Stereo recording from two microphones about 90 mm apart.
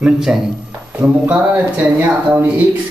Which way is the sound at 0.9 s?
20° right (ahead or behind).